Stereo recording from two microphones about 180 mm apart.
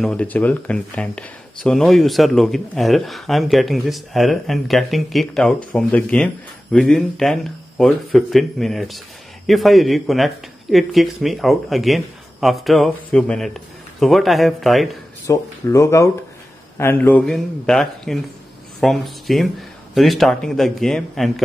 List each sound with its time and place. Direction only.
0.0 s speech: 5° left (ahead or behind)
15.2 s speech: 15° left (ahead or behind)